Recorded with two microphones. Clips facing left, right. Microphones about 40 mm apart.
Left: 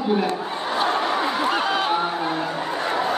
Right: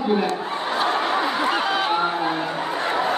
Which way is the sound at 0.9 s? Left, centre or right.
Centre.